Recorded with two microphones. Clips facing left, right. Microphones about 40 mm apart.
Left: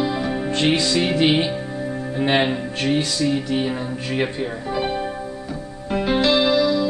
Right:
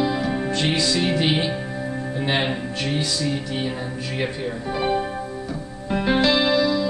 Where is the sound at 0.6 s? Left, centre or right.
Centre.